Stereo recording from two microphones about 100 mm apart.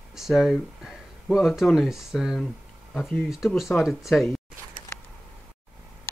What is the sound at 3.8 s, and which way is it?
Speech, centre (ahead or behind).